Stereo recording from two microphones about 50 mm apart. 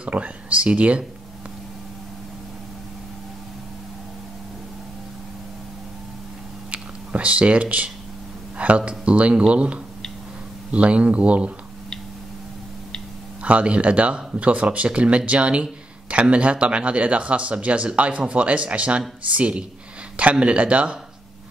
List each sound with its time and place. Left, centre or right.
0.0 s speech: right
6.7 s a sound: right
8.5 s speech: right
13.4 s speech: right